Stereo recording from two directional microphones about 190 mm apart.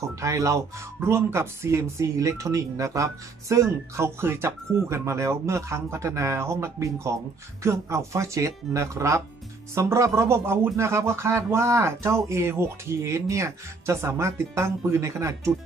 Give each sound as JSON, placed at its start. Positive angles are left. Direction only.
{"t": 0.0, "sound": "speech", "side_deg": -15}